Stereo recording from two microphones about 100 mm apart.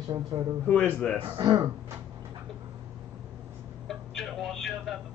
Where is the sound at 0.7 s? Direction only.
15° left (ahead or behind).